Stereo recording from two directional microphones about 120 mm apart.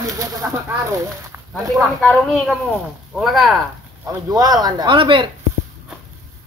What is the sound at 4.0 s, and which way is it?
Speech, 30° right (ahead or behind).